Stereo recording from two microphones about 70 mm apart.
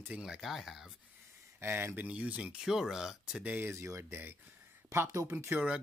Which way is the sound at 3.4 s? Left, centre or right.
Right.